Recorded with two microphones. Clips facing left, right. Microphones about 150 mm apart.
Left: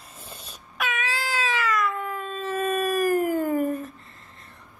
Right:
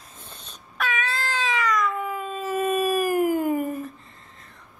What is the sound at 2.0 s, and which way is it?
Howl, 5° right (ahead or behind).